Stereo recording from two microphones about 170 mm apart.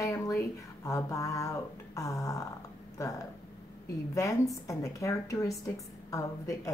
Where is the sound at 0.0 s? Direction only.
20° left (ahead or behind).